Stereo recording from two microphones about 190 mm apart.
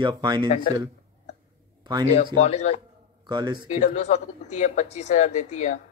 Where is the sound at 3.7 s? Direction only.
40° left (ahead or behind).